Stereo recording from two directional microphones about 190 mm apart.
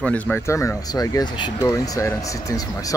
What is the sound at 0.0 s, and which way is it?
Speech, 5° left (ahead or behind).